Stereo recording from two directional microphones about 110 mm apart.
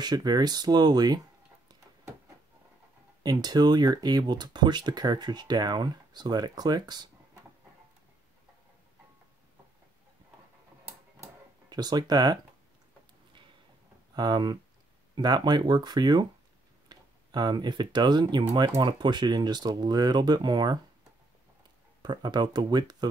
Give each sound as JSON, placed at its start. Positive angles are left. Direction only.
{"t": 0.0, "sound": "speech", "side_deg": -40}
{"t": 3.2, "sound": "speech", "side_deg": -35}
{"t": 11.7, "sound": "speech", "side_deg": -40}
{"t": 14.1, "sound": "speech", "side_deg": -40}
{"t": 22.0, "sound": "speech", "side_deg": -40}